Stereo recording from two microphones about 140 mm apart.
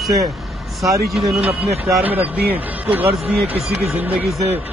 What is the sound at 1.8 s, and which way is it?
A man's voice, 10° right (ahead or behind).